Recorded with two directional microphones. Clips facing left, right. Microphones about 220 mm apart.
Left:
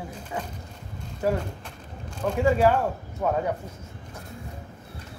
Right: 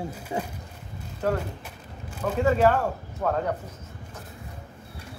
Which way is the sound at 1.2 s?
10° left (ahead or behind).